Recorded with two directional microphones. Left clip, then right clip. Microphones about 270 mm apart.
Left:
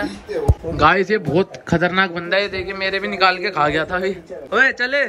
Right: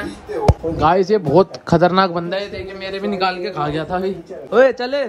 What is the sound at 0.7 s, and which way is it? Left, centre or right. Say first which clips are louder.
A man's voice: left 1 dB; centre.